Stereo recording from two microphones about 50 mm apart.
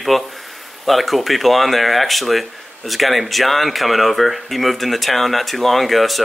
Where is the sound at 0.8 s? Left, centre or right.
Centre.